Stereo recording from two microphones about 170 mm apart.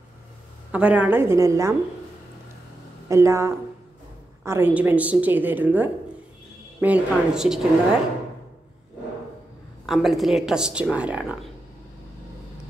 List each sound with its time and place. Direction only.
0.7 s a woman's voice: 10° right (ahead or behind)
3.1 s a woman's voice: 15° right (ahead or behind)
9.8 s speech: centre (ahead or behind)